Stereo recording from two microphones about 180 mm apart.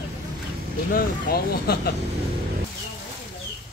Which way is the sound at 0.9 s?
60° left (ahead or behind).